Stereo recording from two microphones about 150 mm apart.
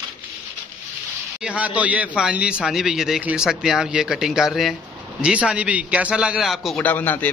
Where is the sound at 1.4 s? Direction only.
10° right (ahead or behind).